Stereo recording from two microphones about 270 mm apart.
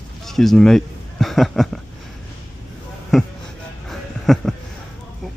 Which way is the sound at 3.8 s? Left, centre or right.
Centre.